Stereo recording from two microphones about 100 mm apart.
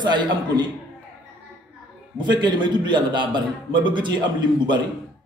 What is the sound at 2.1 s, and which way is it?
A man's voice, 50° right (ahead or behind).